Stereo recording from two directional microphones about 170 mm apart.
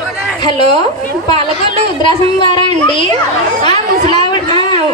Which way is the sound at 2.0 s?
30° left (ahead or behind).